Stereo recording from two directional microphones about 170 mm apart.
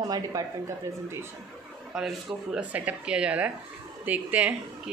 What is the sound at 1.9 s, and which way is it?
A woman's voice, 5° right (ahead or behind).